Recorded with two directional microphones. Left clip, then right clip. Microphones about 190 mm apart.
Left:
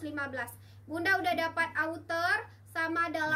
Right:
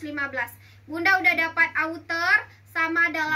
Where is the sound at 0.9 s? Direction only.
25° left (ahead or behind).